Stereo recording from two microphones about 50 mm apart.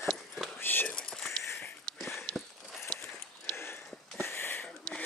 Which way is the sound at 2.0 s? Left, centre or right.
Centre.